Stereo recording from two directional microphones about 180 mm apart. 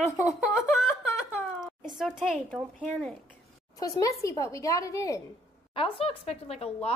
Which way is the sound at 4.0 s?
20° left (ahead or behind).